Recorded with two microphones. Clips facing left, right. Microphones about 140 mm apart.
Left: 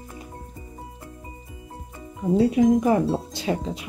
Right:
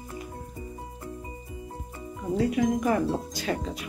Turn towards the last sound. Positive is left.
turn(degrees=20)  # may be behind; listen again after turning